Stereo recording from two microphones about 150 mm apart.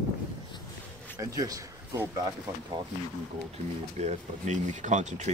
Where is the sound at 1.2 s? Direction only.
25° right (ahead or behind).